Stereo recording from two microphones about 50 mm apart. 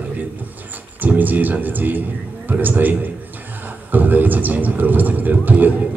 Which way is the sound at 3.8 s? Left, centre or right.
Right.